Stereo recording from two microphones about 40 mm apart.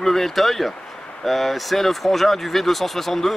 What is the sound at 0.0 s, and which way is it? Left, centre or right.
Speech, centre.